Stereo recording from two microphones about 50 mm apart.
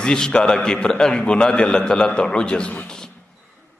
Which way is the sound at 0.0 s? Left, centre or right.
Centre.